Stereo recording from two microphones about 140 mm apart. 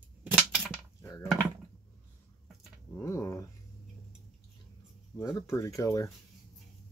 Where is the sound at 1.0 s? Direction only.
25° left (ahead or behind).